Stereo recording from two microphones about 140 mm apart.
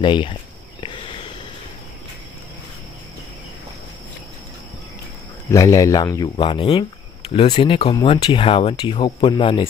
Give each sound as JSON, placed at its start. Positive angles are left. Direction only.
{"t": 0.0, "sound": "cricket", "side_deg": 35}
{"t": 5.5, "sound": "speech", "side_deg": 25}
{"t": 6.3, "sound": "speech", "side_deg": 35}